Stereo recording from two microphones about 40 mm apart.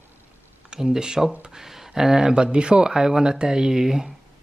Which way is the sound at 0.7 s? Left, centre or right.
Centre.